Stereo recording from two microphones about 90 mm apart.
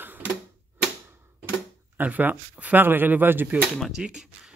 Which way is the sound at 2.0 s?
20° right (ahead or behind).